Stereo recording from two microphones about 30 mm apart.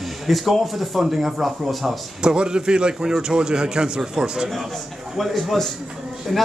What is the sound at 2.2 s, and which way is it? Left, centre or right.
A man's voice, right.